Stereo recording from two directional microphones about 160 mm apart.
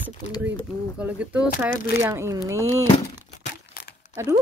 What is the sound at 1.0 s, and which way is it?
Speech, 10° right (ahead or behind).